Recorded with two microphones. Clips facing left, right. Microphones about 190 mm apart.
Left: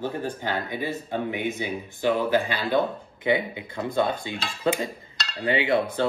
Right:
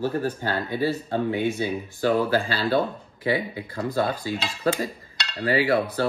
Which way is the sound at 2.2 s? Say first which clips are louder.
Even; 35° right (ahead or behind).